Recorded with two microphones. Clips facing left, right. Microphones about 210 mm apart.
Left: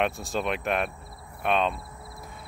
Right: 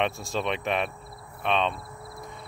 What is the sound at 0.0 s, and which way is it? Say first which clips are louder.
Speech: even; centre (ahead or behind).